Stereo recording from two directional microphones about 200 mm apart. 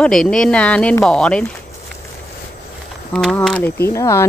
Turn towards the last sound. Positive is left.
turn(degrees=15)  # may be behind; listen again after turning